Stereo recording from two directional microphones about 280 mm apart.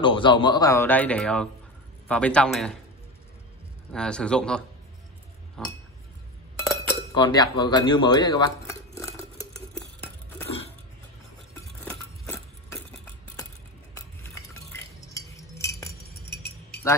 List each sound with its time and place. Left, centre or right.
0.0 s a man's voice: centre
3.9 s speech: centre
6.6 s cutlery: centre
11.8 s a sound: centre
13.9 s cutlery: centre
16.3 s keys jangling: left